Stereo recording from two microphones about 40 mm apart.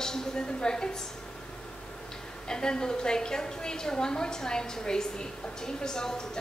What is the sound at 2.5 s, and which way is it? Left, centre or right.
A woman's voice, centre.